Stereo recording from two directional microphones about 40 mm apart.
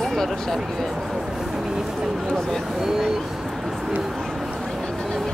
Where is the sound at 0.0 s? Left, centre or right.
Centre.